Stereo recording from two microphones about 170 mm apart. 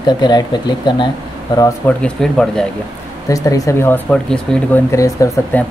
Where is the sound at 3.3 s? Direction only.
20° left (ahead or behind).